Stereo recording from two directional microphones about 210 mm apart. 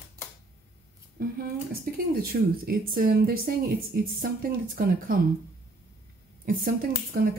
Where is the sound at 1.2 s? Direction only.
45° right (ahead or behind).